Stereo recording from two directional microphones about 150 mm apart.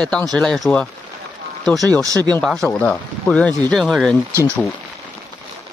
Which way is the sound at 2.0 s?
25° right (ahead or behind).